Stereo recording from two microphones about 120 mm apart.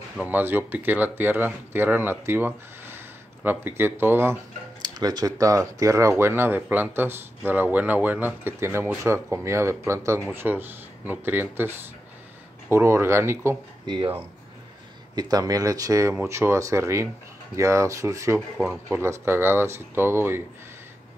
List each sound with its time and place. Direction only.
0.2 s speech: 15° right (ahead or behind)
4.8 s speech: 35° right (ahead or behind)
13.8 s speech: 40° right (ahead or behind)
15.1 s speech: 30° right (ahead or behind)